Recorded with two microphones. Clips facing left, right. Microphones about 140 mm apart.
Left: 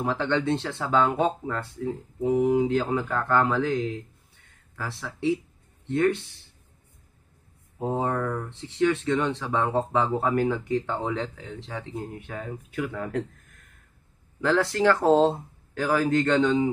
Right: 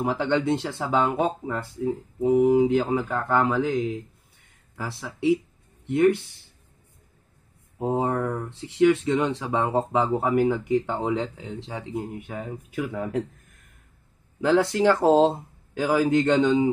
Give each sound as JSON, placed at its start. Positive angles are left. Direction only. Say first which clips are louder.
{"t": 0.0, "sound": "speech", "louder": "right 2 dB", "side_deg": -10}
{"t": 2.4, "sound": "speech", "louder": "right 3 dB", "side_deg": -5}
{"t": 7.8, "sound": "speech", "louder": "right 2 dB", "side_deg": -10}
{"t": 14.4, "sound": "speech", "louder": "right 2 dB", "side_deg": -15}